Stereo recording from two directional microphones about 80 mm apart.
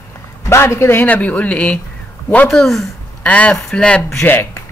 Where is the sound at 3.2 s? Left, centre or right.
Centre.